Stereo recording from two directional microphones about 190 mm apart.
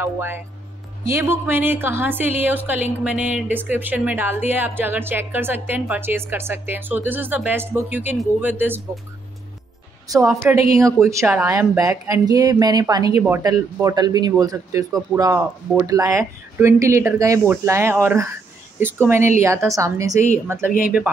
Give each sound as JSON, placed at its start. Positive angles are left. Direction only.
{"t": 0.0, "sound": "a woman's voice", "side_deg": -10}
{"t": 10.0, "sound": "a woman's voice", "side_deg": -15}